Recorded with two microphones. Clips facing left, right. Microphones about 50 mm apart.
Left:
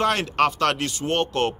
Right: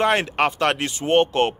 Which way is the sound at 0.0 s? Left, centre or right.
Right.